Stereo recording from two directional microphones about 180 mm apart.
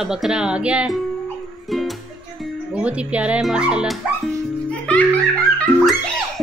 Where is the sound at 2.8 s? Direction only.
5° right (ahead or behind).